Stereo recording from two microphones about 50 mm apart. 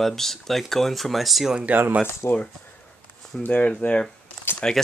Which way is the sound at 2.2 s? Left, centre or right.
Left.